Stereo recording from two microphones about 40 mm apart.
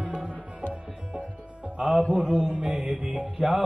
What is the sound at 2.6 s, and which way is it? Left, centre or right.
Music, right.